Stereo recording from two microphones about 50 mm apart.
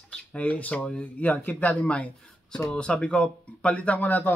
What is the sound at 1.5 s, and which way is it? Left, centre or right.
Speech, left.